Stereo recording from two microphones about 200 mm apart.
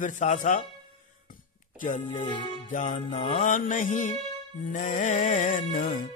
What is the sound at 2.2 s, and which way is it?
Music, 25° left (ahead or behind).